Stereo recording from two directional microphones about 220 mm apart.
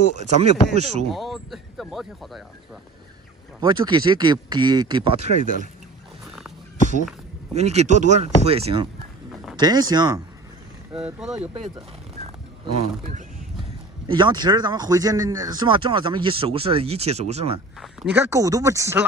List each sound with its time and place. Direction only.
0.2 s speech: 30° right (ahead or behind)
1.1 s speech: centre (ahead or behind)
3.6 s speech: 20° right (ahead or behind)
7.5 s speech: 30° right (ahead or behind)
11.0 s speech: 5° right (ahead or behind)
14.0 s speech: 20° right (ahead or behind)
18.1 s speech: 10° right (ahead or behind)